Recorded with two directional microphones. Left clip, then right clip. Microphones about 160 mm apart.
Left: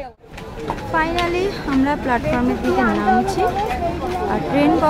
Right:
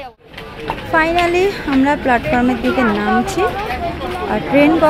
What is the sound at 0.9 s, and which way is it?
Speech, 25° right (ahead or behind).